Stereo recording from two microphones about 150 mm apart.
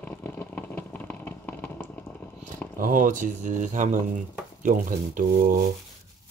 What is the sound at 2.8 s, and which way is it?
Speech, 60° right (ahead or behind).